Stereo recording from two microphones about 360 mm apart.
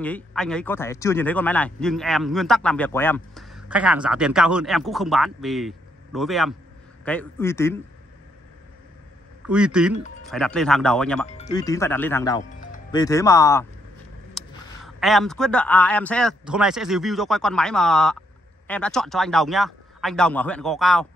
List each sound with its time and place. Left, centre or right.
0.0 s speech: centre
9.5 s speech: centre
11.2 s speech: centre
12.4 s music: left
13.0 s speech: centre
14.4 s a sound: centre
15.0 s speech: centre